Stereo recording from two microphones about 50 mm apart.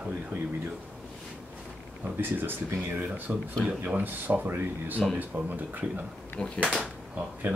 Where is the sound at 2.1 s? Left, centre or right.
Right.